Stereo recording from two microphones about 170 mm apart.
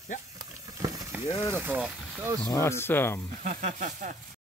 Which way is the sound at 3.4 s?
50° right (ahead or behind).